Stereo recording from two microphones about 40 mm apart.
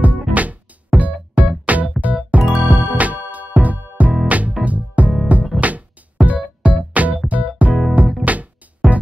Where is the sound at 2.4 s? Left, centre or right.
Centre.